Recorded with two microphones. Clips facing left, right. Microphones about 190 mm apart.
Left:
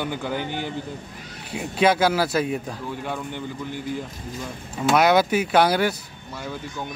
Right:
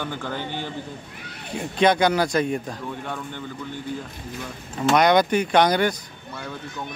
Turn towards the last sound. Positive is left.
turn(degrees=5)  # may be behind; listen again after turning